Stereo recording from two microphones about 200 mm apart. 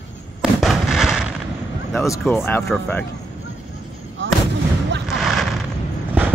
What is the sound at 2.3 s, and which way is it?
Speech, 10° left (ahead or behind).